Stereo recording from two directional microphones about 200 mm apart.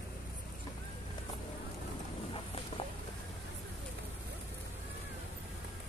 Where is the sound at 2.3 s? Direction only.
25° left (ahead or behind).